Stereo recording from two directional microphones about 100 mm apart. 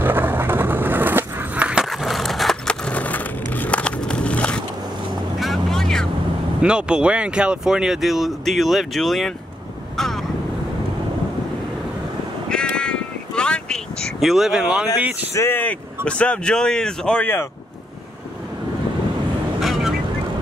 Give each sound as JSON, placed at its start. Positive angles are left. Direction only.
{"t": 0.0, "sound": "skateboard", "side_deg": -20}
{"t": 1.9, "sound": "skateboard", "side_deg": 0}
{"t": 3.5, "sound": "a sound", "side_deg": 15}
{"t": 5.4, "sound": "vehicle", "side_deg": 0}
{"t": 6.6, "sound": "speech", "side_deg": -10}
{"t": 9.9, "sound": "vehicle", "side_deg": 5}
{"t": 12.4, "sound": "crow", "side_deg": 10}
{"t": 15.0, "sound": "speech", "side_deg": -15}
{"t": 15.3, "sound": "speech", "side_deg": 20}
{"t": 19.6, "sound": "vehicle", "side_deg": 0}